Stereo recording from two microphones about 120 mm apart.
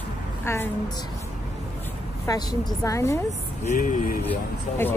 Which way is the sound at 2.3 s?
35° left (ahead or behind).